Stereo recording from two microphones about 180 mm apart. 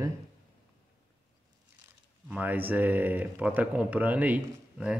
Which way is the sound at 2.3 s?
10° right (ahead or behind).